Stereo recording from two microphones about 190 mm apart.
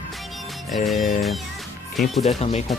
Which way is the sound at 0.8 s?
Centre (ahead or behind).